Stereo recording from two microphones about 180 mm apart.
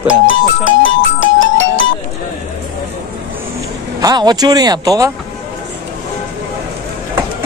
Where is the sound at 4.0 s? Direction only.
20° right (ahead or behind).